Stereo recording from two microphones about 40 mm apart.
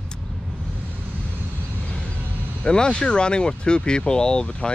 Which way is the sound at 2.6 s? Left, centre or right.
Left.